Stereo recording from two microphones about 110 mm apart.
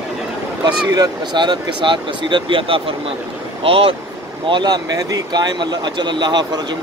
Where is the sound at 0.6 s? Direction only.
40° right (ahead or behind); by 3.9 s 55° right (ahead or behind).